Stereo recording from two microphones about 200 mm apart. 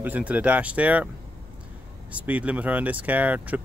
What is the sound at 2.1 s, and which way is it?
Speech, 5° right (ahead or behind).